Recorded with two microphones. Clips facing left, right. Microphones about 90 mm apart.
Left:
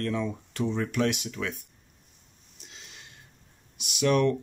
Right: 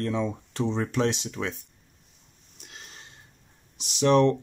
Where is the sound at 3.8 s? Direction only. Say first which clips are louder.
Right 4 dB; 30° right (ahead or behind).